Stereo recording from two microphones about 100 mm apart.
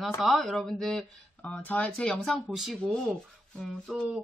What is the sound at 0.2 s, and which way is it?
Speech, centre (ahead or behind).